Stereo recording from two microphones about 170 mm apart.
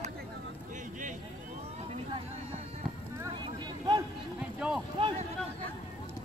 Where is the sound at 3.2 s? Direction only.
25° right (ahead or behind).